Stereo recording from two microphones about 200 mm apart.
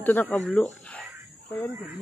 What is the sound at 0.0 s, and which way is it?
Speech, 10° left (ahead or behind).